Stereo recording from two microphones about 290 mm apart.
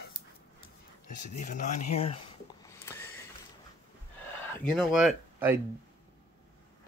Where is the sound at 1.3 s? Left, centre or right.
Left.